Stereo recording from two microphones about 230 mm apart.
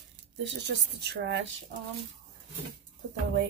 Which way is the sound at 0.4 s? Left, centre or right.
Right.